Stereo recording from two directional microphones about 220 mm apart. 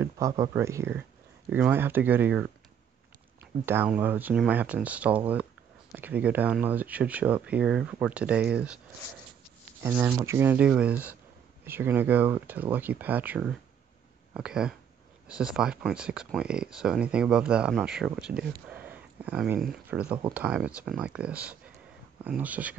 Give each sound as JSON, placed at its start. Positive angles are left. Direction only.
{"t": 0.0, "sound": "speech", "side_deg": -15}
{"t": 3.6, "sound": "speech", "side_deg": -10}
{"t": 9.8, "sound": "speech", "side_deg": -10}